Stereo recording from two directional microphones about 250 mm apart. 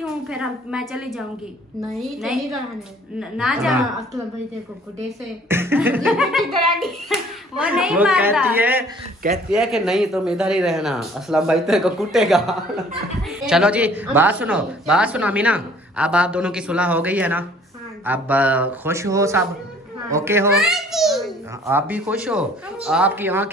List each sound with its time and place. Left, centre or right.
0.0 s speech: centre
5.5 s speech: centre